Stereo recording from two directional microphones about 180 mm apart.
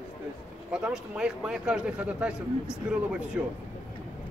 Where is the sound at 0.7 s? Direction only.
5° right (ahead or behind).